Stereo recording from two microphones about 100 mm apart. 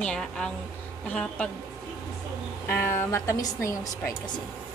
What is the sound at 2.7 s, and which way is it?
A woman's voice, 25° left (ahead or behind).